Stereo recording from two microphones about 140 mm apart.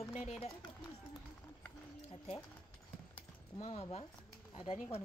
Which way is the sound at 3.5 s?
40° left (ahead or behind).